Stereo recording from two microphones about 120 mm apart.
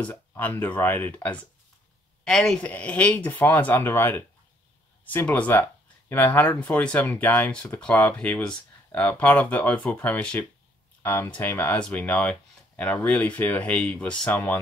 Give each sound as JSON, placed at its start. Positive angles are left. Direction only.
{"t": 0.0, "sound": "speech", "side_deg": 15}
{"t": 2.2, "sound": "speech", "side_deg": 5}
{"t": 11.0, "sound": "a sound", "side_deg": 20}
{"t": 11.3, "sound": "speech", "side_deg": 15}